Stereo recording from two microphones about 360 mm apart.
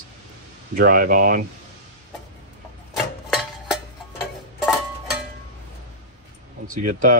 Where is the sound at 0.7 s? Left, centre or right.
Right.